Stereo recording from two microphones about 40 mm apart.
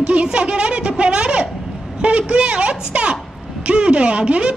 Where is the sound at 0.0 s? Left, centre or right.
Right.